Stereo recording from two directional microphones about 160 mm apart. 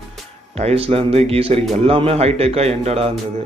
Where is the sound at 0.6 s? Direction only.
40° right (ahead or behind).